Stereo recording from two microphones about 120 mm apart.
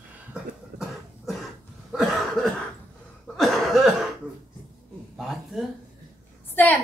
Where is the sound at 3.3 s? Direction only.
Centre (ahead or behind).